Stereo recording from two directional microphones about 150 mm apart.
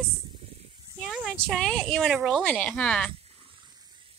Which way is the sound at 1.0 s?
5° right (ahead or behind).